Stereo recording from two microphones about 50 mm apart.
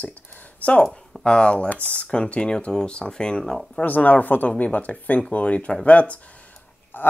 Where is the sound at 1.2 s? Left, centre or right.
Centre.